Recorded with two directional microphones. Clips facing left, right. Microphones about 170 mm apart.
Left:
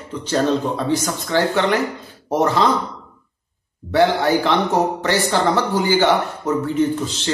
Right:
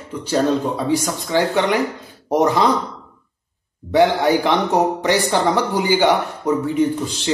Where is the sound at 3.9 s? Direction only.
15° right (ahead or behind).